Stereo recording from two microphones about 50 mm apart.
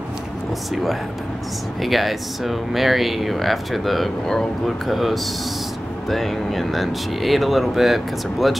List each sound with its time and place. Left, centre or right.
1.8 s speech: centre